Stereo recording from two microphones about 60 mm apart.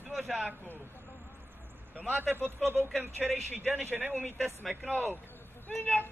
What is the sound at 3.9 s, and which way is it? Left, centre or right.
Speech, right.